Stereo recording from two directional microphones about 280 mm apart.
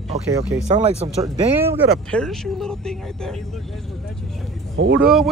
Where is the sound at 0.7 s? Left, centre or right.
Right.